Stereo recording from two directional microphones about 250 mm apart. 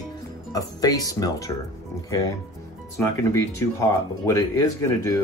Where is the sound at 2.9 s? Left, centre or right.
Centre.